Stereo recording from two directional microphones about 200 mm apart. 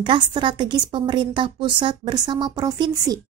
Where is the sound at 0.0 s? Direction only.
25° right (ahead or behind).